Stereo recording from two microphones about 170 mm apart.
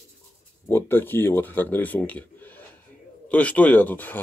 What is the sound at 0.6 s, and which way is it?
Speech, 15° left (ahead or behind).